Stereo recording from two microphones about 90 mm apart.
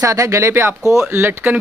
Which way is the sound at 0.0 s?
35° right (ahead or behind).